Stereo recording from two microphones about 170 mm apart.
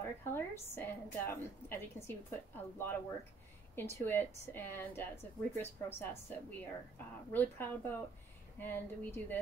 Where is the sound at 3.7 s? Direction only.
15° left (ahead or behind).